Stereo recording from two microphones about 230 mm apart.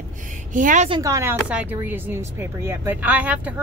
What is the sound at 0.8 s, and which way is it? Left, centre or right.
A woman's voice, centre.